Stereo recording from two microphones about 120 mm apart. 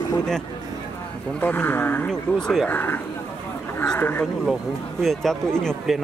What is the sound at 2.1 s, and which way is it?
Speech, 5° left (ahead or behind).